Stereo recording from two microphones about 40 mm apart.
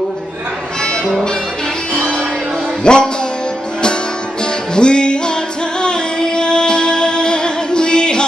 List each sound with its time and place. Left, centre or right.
2.8 s music: left